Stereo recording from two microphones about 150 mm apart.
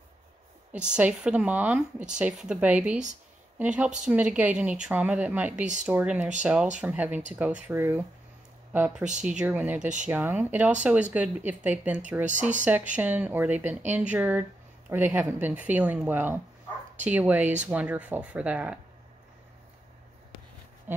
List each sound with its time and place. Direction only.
0.7 s speech: 5° right (ahead or behind)
12.3 s speech: 55° right (ahead or behind)
12.9 s speech: 10° right (ahead or behind)